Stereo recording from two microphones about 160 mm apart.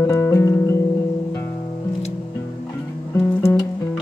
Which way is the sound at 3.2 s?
15° left (ahead or behind).